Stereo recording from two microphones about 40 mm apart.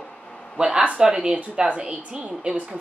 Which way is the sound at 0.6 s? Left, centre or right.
Right.